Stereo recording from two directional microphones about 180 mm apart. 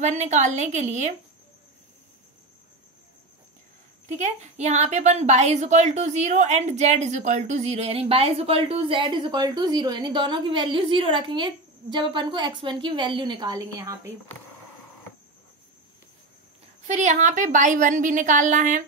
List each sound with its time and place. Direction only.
0.0 s a woman's voice: 40° right (ahead or behind)
4.2 s a woman's voice: 40° right (ahead or behind); by 14.1 s 15° right (ahead or behind)
16.8 s a woman's voice: 40° right (ahead or behind)